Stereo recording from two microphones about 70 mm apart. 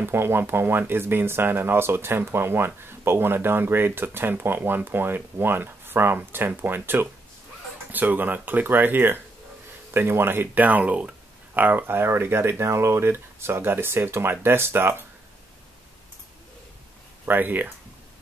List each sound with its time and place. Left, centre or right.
0.0 s speech: right
17.3 s speech: right